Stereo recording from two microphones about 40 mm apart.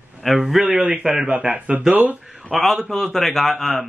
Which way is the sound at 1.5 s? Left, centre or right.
Right.